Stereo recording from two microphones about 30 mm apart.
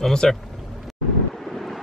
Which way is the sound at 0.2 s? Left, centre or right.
Centre.